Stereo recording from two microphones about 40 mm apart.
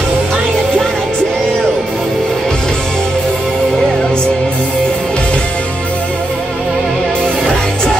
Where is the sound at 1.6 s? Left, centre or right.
Centre.